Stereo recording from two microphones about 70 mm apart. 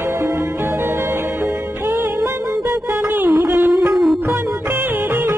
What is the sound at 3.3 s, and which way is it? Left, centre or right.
Music, right.